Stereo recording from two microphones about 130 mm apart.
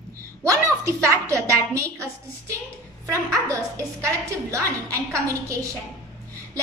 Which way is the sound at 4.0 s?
25° right (ahead or behind).